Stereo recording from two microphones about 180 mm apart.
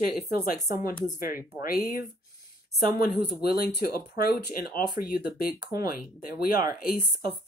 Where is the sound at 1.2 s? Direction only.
50° left (ahead or behind).